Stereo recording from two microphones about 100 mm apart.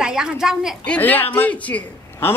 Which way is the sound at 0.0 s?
10° right (ahead or behind).